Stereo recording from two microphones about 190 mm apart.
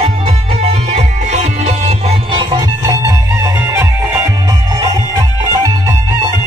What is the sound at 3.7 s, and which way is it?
Music, 15° right (ahead or behind).